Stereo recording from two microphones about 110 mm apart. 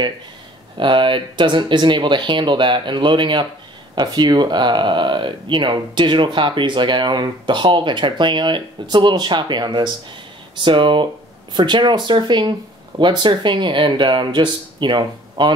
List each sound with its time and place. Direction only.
0.7 s speech: 50° right (ahead or behind)